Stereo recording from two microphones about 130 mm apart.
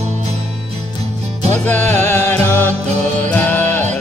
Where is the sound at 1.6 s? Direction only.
15° left (ahead or behind).